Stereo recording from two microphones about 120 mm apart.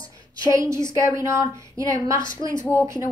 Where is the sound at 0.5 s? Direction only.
25° right (ahead or behind).